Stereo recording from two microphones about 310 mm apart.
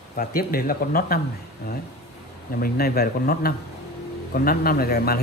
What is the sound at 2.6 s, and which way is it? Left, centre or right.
A man's voice, left.